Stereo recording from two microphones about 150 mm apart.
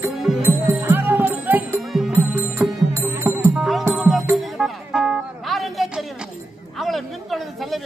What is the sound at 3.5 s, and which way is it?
Music, centre (ahead or behind).